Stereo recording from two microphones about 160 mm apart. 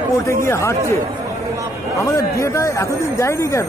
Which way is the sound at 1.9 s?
20° left (ahead or behind).